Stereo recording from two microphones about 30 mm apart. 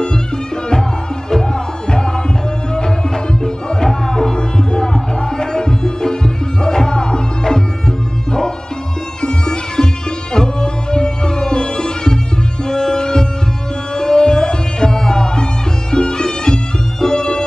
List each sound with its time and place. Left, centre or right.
3.4 s music: left
9.2 s music: left